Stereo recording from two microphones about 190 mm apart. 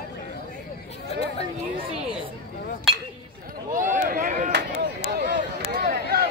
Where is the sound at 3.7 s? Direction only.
45° right (ahead or behind).